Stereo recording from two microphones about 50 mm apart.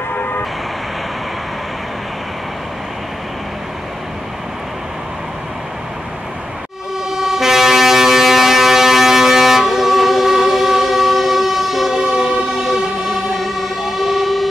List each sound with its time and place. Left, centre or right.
0.1 s vehicle: left
7.1 s vehicle: centre
12.5 s train: centre